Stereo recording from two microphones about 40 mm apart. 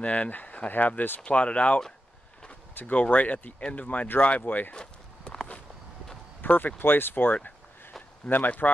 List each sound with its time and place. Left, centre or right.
0.0 s speech: left
1.2 s speech: left
2.7 s speech: left
3.0 s speech: left
6.4 s speech: left
8.3 s speech: centre
8.6 s speech: left